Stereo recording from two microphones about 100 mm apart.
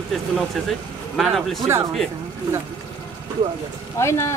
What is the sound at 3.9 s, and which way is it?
Speech, 30° left (ahead or behind).